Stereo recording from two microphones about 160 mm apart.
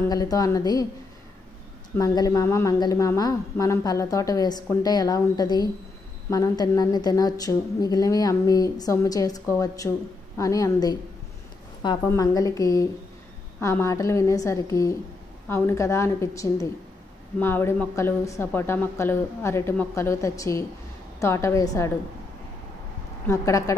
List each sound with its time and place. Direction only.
0.0 s a woman's voice: 25° left (ahead or behind)
2.0 s a woman's voice: 20° left (ahead or behind)
12.1 s a woman's voice: 20° left (ahead or behind)
23.2 s a woman's voice: 20° left (ahead or behind)